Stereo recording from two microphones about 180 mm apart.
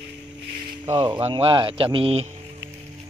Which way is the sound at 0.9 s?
25° right (ahead or behind).